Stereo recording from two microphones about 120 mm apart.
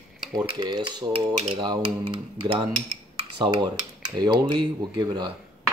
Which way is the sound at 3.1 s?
40° right (ahead or behind).